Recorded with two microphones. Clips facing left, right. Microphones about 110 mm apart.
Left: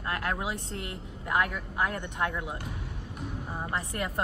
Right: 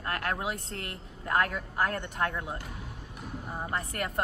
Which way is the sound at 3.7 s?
20° left (ahead or behind).